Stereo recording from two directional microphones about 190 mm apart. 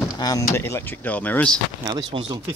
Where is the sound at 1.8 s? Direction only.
20° right (ahead or behind).